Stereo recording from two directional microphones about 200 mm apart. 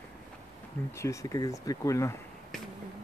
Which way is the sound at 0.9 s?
15° left (ahead or behind).